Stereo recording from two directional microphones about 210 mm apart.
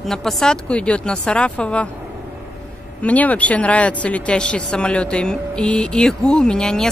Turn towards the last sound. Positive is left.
turn(degrees=5)  # may be behind; listen again after turning